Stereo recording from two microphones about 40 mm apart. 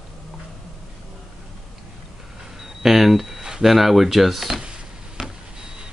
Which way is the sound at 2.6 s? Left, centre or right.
Centre.